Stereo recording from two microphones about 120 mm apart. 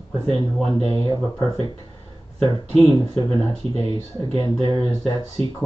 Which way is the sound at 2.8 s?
35° left (ahead or behind).